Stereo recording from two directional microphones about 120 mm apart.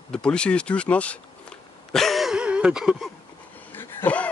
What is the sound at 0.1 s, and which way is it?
Speech, 10° left (ahead or behind).